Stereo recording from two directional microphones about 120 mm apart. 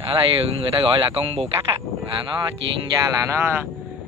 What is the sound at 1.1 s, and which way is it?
Speech, 55° right (ahead or behind).